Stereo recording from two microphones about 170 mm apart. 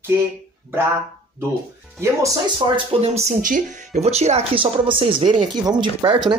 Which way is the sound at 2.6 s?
30° right (ahead or behind).